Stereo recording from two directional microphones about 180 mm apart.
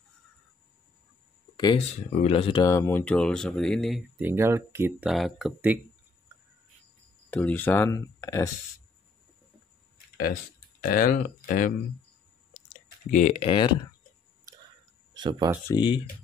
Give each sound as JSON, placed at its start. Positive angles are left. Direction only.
{"t": 2.1, "sound": "speech", "side_deg": 35}
{"t": 4.2, "sound": "speech", "side_deg": -15}
{"t": 5.1, "sound": "speech", "side_deg": 0}
{"t": 7.2, "sound": "speech", "side_deg": 10}
{"t": 10.8, "sound": "speech", "side_deg": 50}
{"t": 13.1, "sound": "speech", "side_deg": 40}
{"t": 15.1, "sound": "speech", "side_deg": -25}
{"t": 15.7, "sound": "speech", "side_deg": 25}